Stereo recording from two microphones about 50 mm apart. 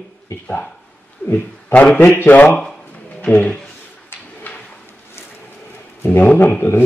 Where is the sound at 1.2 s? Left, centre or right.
Left.